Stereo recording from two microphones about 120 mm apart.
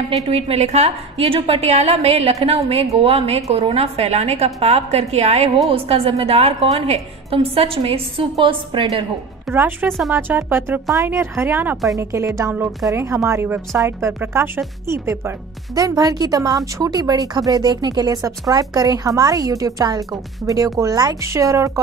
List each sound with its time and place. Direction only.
0.3 s a woman's voice: 55° right (ahead or behind)
9.5 s a woman's voice: 15° right (ahead or behind)
11.7 s a woman's voice: centre (ahead or behind)
12.0 s a woman's voice: 25° right (ahead or behind)